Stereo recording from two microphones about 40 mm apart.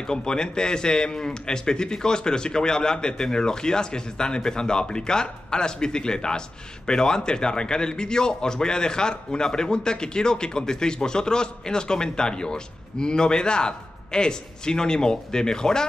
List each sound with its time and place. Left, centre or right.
0.0 s speech: centre